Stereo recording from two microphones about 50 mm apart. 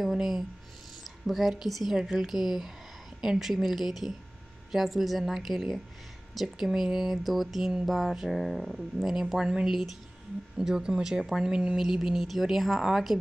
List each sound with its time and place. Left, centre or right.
0.0 s a woman's voice: centre
10.6 s speech: centre